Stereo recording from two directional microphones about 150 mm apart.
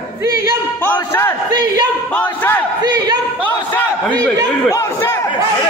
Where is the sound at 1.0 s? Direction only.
15° left (ahead or behind).